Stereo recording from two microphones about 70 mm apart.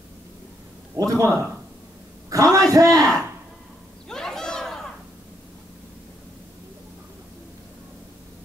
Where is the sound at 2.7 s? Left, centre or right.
Right.